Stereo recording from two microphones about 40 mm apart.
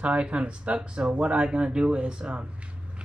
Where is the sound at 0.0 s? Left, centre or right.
Right.